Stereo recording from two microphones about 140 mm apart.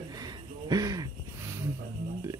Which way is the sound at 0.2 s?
25° right (ahead or behind).